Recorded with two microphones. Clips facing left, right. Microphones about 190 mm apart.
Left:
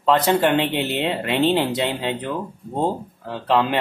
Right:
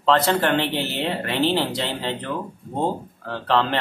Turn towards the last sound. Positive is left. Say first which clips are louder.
# left 2 dB
turn(degrees=15)  # may be behind; listen again after turning